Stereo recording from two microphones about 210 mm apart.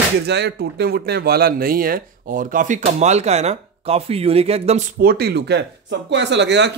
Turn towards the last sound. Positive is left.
turn(degrees=-55)  # may be behind; listen again after turning